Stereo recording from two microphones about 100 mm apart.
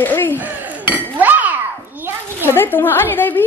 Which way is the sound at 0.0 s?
20° left (ahead or behind).